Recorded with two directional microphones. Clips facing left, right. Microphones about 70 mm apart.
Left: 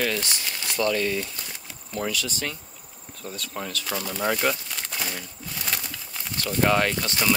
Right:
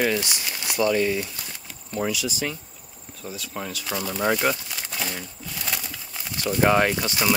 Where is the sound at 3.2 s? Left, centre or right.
Centre.